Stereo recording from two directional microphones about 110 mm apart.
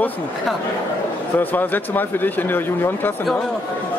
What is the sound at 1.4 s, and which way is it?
Speech, 15° left (ahead or behind).